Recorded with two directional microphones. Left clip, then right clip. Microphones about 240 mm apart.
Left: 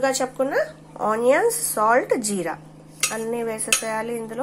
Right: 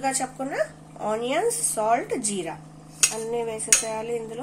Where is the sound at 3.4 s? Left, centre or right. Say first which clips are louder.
Left 3 dB; left.